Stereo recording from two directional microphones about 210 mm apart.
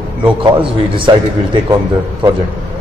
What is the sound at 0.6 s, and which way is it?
A man's voice, 25° right (ahead or behind).